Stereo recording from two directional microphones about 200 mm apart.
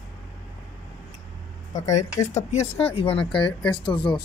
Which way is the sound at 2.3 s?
35° left (ahead or behind).